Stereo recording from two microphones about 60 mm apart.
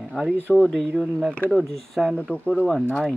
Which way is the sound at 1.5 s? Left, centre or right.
Centre.